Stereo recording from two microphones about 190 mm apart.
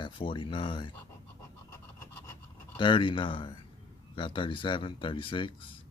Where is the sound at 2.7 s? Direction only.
25° left (ahead or behind).